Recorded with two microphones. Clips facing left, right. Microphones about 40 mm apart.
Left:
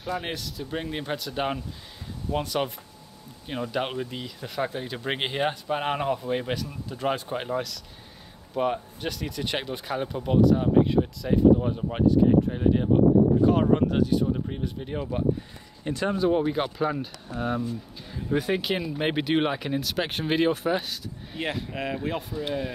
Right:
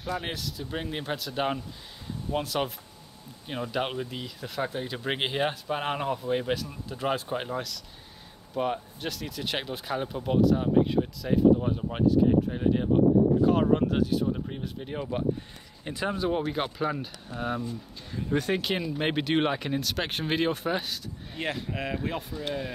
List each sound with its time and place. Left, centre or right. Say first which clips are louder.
0.0 s speech: left 1 dB; centre